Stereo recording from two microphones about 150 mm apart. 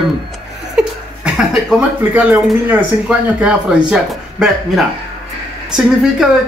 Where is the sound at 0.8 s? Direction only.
5° right (ahead or behind).